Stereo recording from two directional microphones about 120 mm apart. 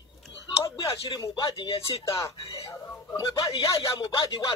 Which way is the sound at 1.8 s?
25° left (ahead or behind).